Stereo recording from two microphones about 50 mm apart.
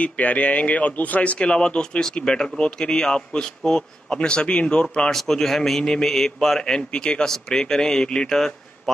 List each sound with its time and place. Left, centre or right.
0.0 s a man's voice: left
5.1 s a man's voice: centre